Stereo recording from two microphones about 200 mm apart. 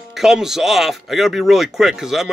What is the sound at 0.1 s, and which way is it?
Speech, centre (ahead or behind).